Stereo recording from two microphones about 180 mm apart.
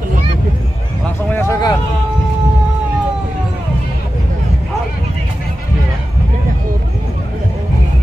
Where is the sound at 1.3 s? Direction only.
20° left (ahead or behind).